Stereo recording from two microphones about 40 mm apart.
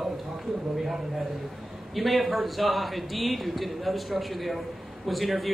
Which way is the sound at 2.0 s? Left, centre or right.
Centre.